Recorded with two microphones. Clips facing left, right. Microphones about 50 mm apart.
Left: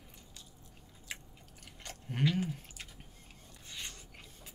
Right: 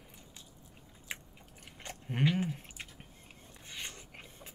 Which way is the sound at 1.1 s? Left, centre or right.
Right.